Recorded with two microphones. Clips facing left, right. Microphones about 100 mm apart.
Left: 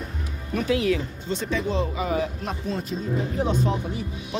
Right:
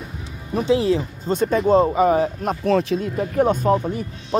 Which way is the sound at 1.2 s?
45° right (ahead or behind).